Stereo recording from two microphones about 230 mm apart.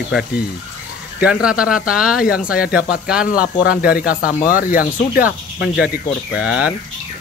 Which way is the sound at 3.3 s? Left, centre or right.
Left.